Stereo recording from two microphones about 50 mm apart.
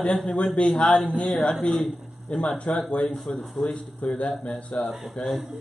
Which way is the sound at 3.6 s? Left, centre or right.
Centre.